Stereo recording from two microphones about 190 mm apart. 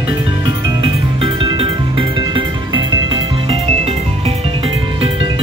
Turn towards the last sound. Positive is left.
turn(degrees=-30)  # may be behind; listen again after turning